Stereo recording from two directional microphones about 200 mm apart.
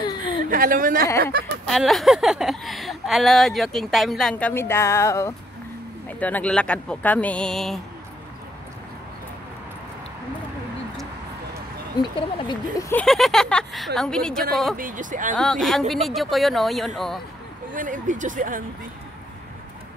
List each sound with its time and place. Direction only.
0.5 s a woman's voice: 45° right (ahead or behind)
1.7 s speech: centre (ahead or behind)
12.0 s speech: 20° left (ahead or behind)
12.9 s speech: centre (ahead or behind)
14.8 s speech: 40° right (ahead or behind)
15.3 s speech: centre (ahead or behind)
17.7 s speech: 40° right (ahead or behind)